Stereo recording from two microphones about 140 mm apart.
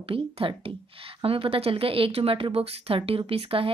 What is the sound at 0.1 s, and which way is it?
A woman's voice, 40° right (ahead or behind).